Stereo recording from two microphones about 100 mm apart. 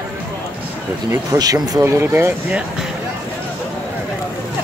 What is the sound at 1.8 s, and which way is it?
Speech, 25° right (ahead or behind).